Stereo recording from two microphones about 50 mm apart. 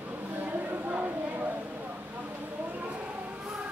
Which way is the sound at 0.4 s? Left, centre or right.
Right.